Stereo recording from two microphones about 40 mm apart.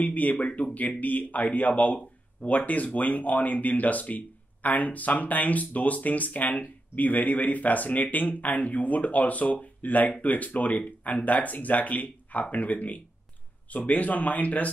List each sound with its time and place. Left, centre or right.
0.0 s speech: left